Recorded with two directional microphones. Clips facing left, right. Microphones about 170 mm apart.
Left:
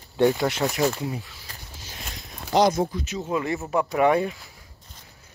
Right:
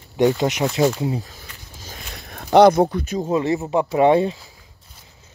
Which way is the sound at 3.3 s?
25° right (ahead or behind).